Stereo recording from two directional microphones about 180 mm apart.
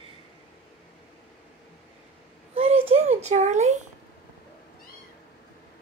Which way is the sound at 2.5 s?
30° right (ahead or behind).